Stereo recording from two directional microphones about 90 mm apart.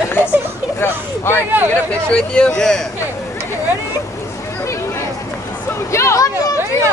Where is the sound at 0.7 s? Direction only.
25° left (ahead or behind).